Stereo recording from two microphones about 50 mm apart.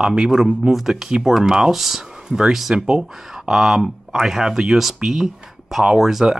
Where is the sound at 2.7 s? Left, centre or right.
Centre.